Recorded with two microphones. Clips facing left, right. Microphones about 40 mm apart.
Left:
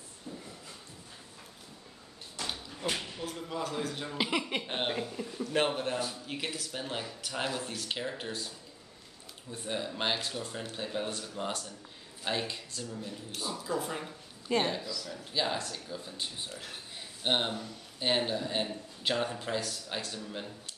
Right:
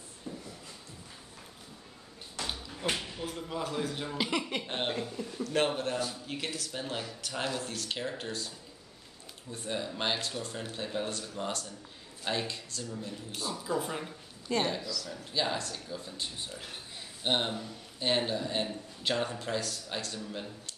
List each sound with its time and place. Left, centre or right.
3.0 s music: centre
4.2 s a man's voice: centre
14.5 s a man's voice: centre
15.0 s a man's voice: centre